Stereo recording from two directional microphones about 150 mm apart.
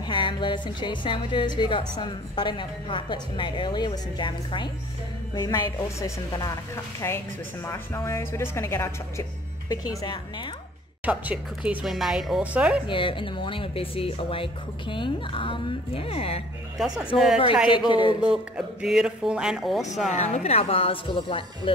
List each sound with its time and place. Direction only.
0.0 s a woman's voice: 35° left (ahead or behind); by 9.2 s 15° left (ahead or behind)
11.1 s speech: 10° right (ahead or behind)
12.8 s a woman's voice: 35° left (ahead or behind)
16.7 s speech: 5° right (ahead or behind)
17.6 s a woman's voice: 30° left (ahead or behind)
18.2 s speech: 5° right (ahead or behind)
20.1 s a woman's voice: 50° left (ahead or behind)